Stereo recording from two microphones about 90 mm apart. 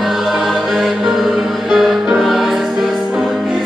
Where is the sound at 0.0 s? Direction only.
Centre (ahead or behind).